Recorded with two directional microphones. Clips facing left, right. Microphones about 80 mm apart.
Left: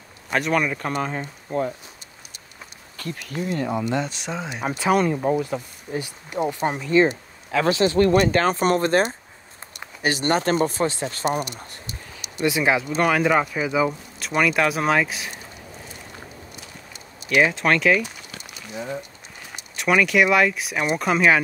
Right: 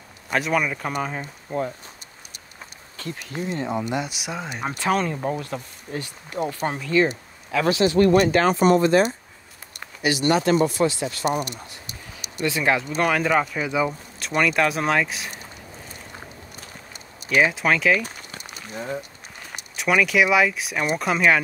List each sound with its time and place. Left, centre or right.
0.3 s speech: centre
3.0 s speech: right
3.9 s speech: centre; by 7.2 s left
7.5 s speech: left
11.8 s a sound: left
12.4 s speech: centre
17.3 s speech: centre
18.0 s a sound: right
19.7 s speech: centre